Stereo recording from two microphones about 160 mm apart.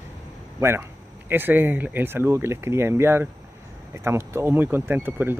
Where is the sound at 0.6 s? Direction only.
15° right (ahead or behind).